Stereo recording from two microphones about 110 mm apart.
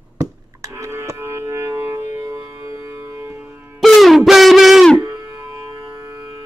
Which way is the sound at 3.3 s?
15° right (ahead or behind).